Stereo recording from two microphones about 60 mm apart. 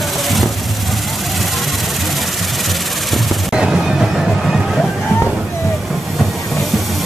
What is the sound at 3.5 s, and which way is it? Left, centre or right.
Music, centre.